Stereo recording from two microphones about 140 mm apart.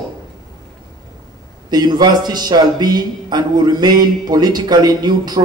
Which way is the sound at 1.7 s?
30° right (ahead or behind).